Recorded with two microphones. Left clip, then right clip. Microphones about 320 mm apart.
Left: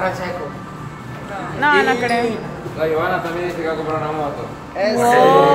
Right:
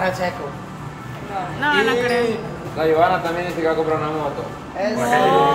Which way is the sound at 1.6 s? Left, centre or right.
Centre.